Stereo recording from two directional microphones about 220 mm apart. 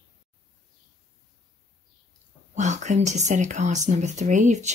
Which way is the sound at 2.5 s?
30° right (ahead or behind).